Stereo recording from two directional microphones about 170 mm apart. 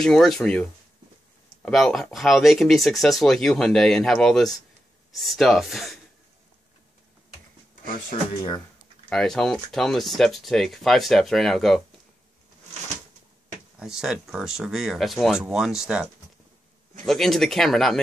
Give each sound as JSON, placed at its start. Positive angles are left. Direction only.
{"t": 0.0, "sound": "speech", "side_deg": 5}
{"t": 8.4, "sound": "speech", "side_deg": 20}
{"t": 9.1, "sound": "speech", "side_deg": 5}
{"t": 13.7, "sound": "speech", "side_deg": -5}